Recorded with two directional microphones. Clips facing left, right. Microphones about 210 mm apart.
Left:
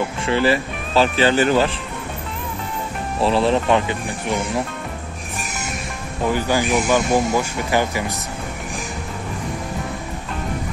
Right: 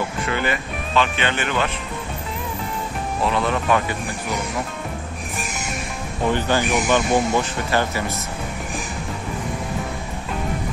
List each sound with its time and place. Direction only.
0.2 s speech: 30° left (ahead or behind)
3.2 s speech: 30° left (ahead or behind)
6.3 s speech: 10° left (ahead or behind)